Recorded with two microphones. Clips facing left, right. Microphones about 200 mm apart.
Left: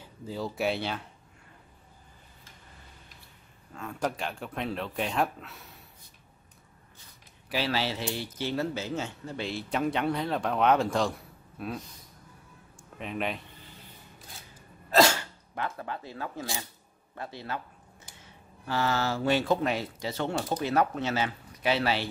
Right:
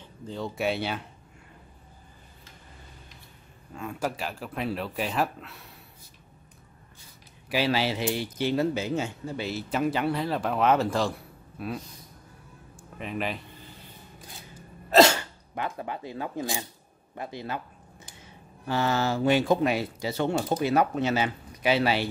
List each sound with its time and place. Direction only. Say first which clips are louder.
0.0 s speech: even; 5° left (ahead or behind)
3.7 s speech: right 1 dB; 10° right (ahead or behind)
7.4 s speech: right 4 dB; 10° right (ahead or behind)
12.7 s a sound: right 2 dB; centre (ahead or behind)
15.5 s speech: right 2 dB; 15° right (ahead or behind)
18.7 s speech: right 3 dB; 20° right (ahead or behind)